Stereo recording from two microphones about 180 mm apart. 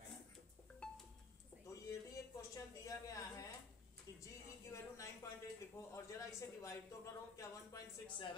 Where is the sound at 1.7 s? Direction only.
15° left (ahead or behind).